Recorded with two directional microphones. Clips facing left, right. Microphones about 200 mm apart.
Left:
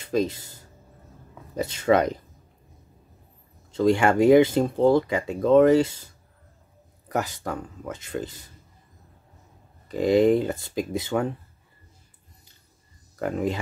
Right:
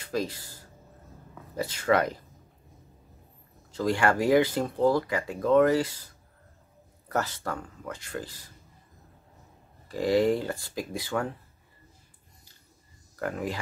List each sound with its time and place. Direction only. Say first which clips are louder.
0.0 s speech: left 6 dB; 25° left (ahead or behind)
3.7 s speech: left 5 dB; 25° left (ahead or behind)
7.1 s speech: left 2 dB; 15° left (ahead or behind)
9.8 s speech: left 5 dB; 20° left (ahead or behind)
13.2 s speech: left 5 dB; 25° left (ahead or behind)